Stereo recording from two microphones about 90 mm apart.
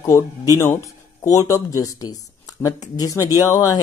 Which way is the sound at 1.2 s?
35° left (ahead or behind).